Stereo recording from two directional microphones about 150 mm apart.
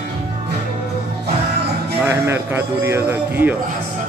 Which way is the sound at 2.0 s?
15° right (ahead or behind).